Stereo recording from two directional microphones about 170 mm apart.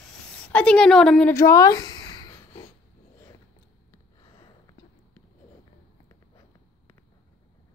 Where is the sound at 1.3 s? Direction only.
20° left (ahead or behind).